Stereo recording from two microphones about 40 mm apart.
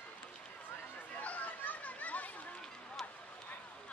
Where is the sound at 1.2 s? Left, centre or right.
Left.